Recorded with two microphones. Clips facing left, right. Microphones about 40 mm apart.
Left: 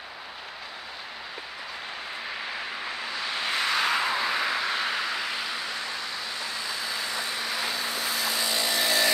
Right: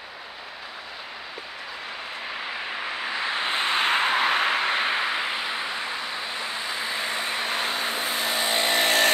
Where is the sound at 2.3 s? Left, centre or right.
Centre.